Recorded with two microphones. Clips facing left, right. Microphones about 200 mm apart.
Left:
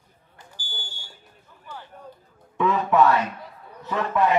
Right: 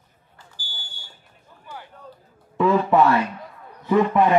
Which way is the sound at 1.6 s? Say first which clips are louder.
Right 1 dB; 15° right (ahead or behind).